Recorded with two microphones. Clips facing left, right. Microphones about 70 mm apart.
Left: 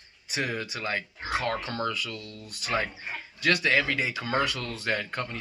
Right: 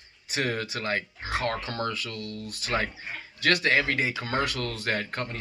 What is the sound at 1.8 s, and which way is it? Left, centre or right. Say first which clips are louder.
Speech: even; right.